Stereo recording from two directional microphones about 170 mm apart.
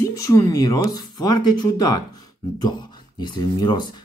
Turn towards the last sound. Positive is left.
turn(degrees=25)  # may be behind; listen again after turning